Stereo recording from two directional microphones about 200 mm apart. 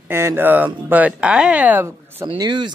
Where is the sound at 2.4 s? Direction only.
20° right (ahead or behind).